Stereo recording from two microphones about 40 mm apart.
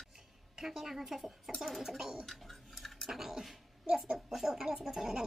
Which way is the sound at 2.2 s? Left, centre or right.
Centre.